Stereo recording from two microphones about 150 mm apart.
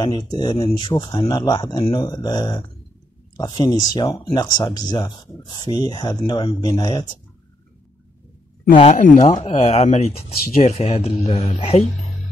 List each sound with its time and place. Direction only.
0.0 s speech: 30° left (ahead or behind)
8.7 s speech: 50° left (ahead or behind)